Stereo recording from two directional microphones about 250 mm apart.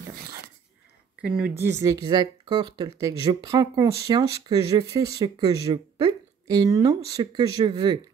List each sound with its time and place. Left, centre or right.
1.2 s speech: centre